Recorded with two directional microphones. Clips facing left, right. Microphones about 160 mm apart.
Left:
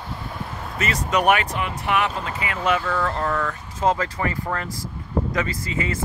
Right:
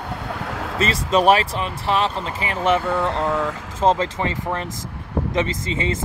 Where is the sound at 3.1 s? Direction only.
90° right.